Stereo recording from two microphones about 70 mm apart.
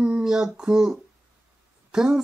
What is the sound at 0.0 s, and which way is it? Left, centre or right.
Speech, centre.